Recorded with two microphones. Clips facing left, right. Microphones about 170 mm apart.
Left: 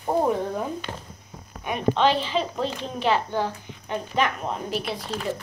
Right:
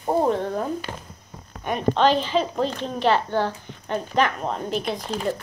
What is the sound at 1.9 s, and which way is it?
Speech, 45° right (ahead or behind).